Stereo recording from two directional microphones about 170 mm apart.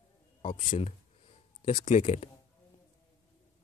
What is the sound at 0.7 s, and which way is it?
Speech, 40° left (ahead or behind).